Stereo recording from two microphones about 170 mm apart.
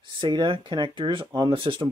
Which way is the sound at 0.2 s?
25° right (ahead or behind).